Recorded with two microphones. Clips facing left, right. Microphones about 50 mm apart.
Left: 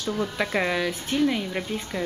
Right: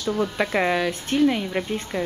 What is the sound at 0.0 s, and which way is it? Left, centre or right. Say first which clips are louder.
Speech: right 3 dB; centre.